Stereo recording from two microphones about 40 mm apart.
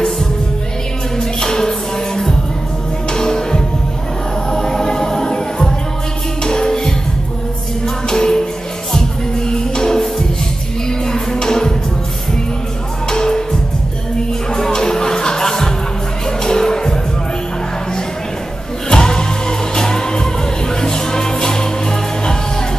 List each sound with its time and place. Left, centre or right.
1.1 s music: centre
9.5 s music: centre
13.1 s music: centre
18.9 s music: centre